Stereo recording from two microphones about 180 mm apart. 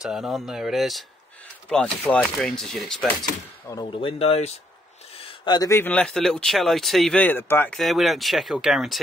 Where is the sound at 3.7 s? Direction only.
25° left (ahead or behind).